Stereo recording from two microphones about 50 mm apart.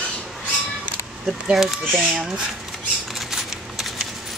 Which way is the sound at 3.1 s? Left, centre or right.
Centre.